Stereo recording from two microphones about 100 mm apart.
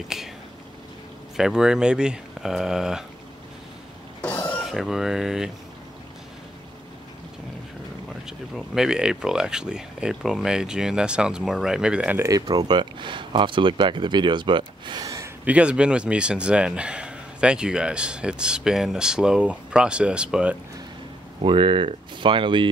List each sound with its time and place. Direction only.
0.1 s speech: 5° right (ahead or behind)
1.3 s speech: 5° right (ahead or behind)
4.2 s a sound: 15° left (ahead or behind)
4.6 s speech: 5° right (ahead or behind)
8.3 s speech: 5° right (ahead or behind)
12.2 s speech: 40° right (ahead or behind)
15.4 s speech: 10° right (ahead or behind)
21.4 s speech: 60° right (ahead or behind)